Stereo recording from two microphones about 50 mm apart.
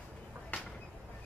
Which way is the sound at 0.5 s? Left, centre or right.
Left.